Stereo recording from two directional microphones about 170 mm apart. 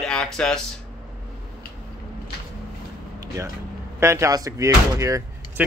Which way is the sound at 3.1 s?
20° right (ahead or behind).